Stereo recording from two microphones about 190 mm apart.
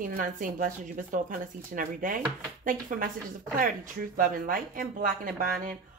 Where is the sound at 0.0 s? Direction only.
45° right (ahead or behind).